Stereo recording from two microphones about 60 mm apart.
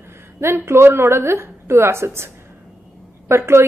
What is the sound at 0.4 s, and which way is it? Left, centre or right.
A woman's voice, right.